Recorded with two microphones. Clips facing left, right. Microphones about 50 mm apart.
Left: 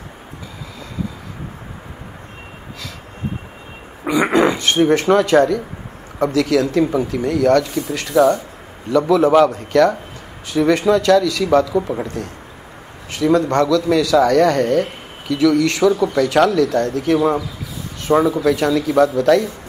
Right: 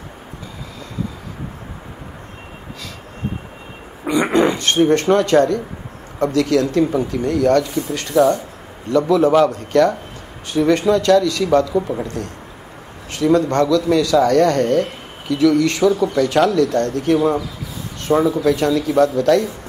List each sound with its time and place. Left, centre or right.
4.1 s a sound: left
4.4 s speech: centre
8.2 s speech: left
8.9 s speech: centre